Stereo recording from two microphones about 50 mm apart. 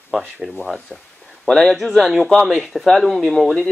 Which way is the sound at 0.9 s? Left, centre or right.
Centre.